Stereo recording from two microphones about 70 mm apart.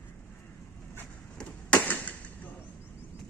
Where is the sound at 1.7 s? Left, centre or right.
Left.